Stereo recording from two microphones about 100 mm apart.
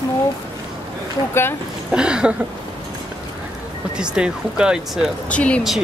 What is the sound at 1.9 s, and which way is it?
Speech, 10° right (ahead or behind).